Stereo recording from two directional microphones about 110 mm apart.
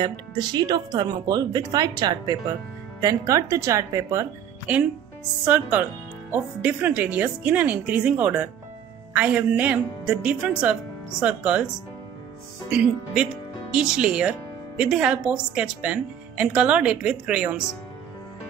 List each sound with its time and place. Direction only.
0.0 s speech: 40° right (ahead or behind)
4.7 s a woman's voice: 15° right (ahead or behind)